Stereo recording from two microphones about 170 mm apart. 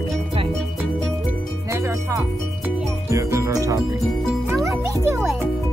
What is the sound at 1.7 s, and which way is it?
Music, 15° right (ahead or behind).